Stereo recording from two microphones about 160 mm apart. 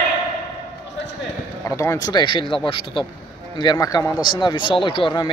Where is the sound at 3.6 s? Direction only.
25° left (ahead or behind).